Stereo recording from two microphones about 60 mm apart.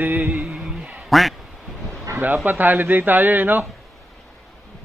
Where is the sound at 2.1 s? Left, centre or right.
Right.